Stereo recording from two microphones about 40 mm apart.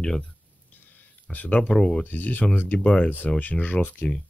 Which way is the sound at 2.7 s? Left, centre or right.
Left.